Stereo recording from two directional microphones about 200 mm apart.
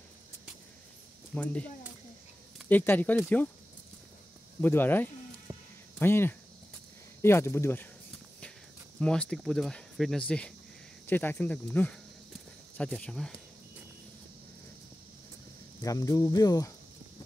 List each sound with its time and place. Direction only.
1.3 s speech: 5° left (ahead or behind)
2.7 s speech: 10° left (ahead or behind)
4.6 s speech: 10° left (ahead or behind)
5.5 s a sound: 15° right (ahead or behind)
5.9 s speech: 10° left (ahead or behind)
9.0 s speech: 5° left (ahead or behind)
15.8 s speech: 15° left (ahead or behind)